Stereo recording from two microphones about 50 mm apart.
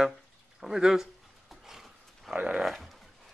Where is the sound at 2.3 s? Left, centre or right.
Right.